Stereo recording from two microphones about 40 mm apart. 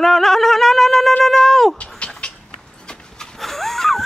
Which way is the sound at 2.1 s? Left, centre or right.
Left.